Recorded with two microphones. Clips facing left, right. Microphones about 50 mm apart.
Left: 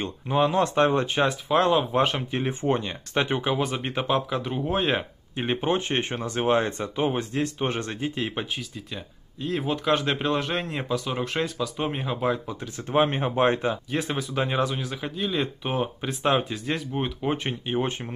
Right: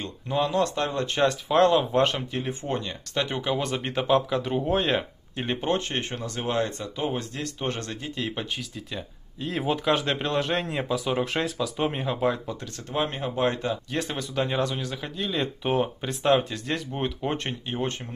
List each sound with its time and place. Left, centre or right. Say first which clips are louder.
0.0 s speech: left 3 dB; left
1.0 s speech: even; centre
2.1 s speech: left 2 dB; left
3.6 s speech: right 1 dB; centre
8.5 s speech: right 1 dB; centre
12.9 s speech: left 5 dB; left
13.8 s speech: left 2 dB; centre
17.6 s speech: left 4 dB; centre